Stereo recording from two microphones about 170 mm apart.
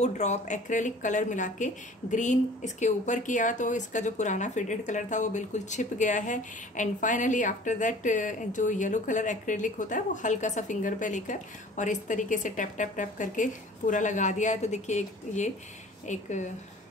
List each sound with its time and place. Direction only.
0.0 s speech: 45° left (ahead or behind)